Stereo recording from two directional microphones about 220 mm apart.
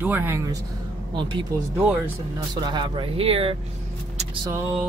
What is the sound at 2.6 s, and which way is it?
Speech, 20° right (ahead or behind).